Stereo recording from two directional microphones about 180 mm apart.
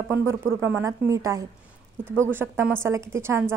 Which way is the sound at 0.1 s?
15° right (ahead or behind).